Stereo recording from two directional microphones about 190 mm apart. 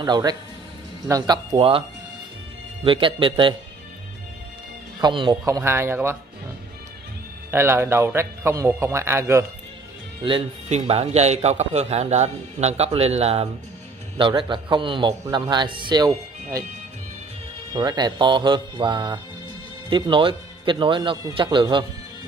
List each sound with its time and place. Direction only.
0.0 s speech: 20° right (ahead or behind)
5.0 s a man's voice: 25° right (ahead or behind)
7.5 s a man's voice: 10° right (ahead or behind)
10.2 s a man's voice: 30° right (ahead or behind)
17.7 s speech: 20° right (ahead or behind)